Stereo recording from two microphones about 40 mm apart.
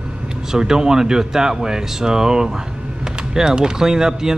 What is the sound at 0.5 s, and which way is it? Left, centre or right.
Speech, centre.